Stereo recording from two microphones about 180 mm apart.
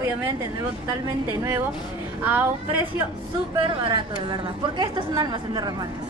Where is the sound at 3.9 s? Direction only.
25° right (ahead or behind).